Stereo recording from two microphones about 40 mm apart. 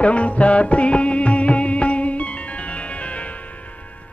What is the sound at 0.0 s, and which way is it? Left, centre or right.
Music, left.